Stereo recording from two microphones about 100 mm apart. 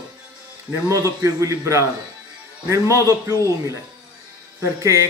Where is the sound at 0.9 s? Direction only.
30° right (ahead or behind).